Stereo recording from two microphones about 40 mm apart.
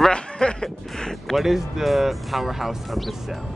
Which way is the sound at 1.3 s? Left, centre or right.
Centre.